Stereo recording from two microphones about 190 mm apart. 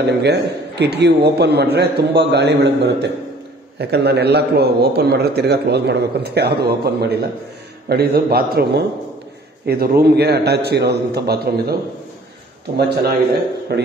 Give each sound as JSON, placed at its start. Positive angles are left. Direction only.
{"t": 0.0, "sound": "a man's voice", "side_deg": -60}
{"t": 12.7, "sound": "a man's voice", "side_deg": -60}